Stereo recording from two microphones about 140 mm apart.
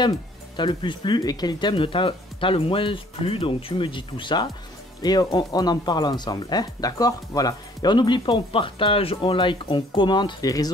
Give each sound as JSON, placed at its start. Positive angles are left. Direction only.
{"t": 0.6, "sound": "speech", "side_deg": 35}